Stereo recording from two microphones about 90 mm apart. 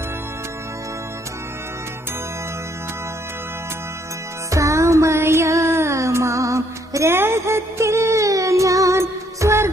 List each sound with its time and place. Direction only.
4.5 s music: 35° right (ahead or behind)